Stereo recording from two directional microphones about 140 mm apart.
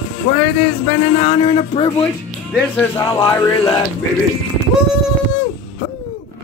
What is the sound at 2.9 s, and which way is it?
Music, 25° left (ahead or behind).